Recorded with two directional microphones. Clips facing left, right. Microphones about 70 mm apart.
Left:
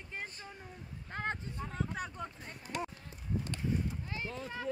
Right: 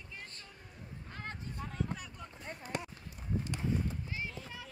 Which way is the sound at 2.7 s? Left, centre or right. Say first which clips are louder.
Left 2 dB; right.